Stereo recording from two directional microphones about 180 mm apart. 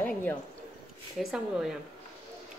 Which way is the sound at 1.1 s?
5° right (ahead or behind).